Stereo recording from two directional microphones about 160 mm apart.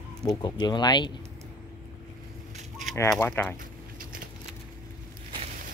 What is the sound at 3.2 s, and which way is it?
Speech, 10° left (ahead or behind).